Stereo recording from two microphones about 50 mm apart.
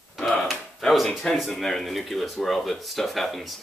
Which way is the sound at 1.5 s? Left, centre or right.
Centre.